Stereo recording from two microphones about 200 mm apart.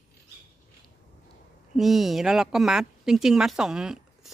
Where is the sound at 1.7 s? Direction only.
Centre (ahead or behind).